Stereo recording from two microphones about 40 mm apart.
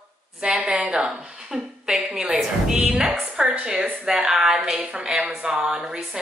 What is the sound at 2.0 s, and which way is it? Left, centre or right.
Speech, right.